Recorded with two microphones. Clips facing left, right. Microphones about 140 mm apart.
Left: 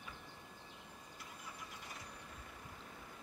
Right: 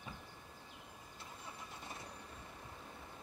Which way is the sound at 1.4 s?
25° right (ahead or behind).